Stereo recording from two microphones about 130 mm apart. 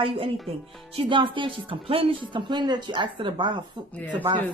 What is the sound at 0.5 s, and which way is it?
A woman's voice, 50° right (ahead or behind).